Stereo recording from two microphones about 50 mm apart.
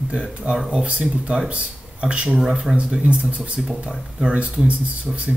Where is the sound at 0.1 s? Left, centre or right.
Right.